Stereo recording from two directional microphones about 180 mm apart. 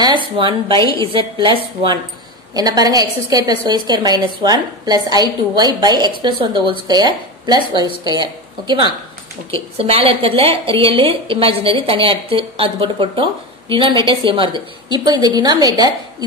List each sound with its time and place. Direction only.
0.0 s a woman's voice: 25° right (ahead or behind)